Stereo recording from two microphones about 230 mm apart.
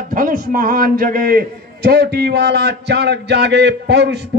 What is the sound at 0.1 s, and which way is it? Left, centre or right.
A man's voice, right.